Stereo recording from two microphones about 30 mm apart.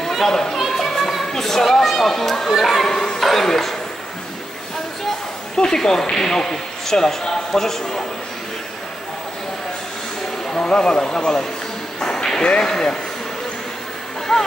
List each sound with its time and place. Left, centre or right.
0.0 s chatter: centre
0.6 s a sound: centre
3.2 s music: centre
5.7 s a man's voice: centre
10.5 s a sound: left
10.9 s speech: left
12.0 s a sound: left
12.4 s speech: left
12.6 s speech: centre
14.3 s speech: left